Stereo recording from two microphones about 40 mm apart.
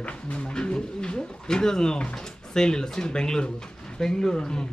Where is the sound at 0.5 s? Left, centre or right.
Left.